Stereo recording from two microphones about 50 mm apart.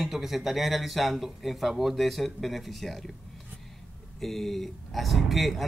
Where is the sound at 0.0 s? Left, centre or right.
Centre.